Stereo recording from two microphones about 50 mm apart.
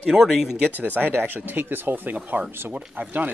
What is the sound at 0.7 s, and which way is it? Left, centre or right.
Speech, right.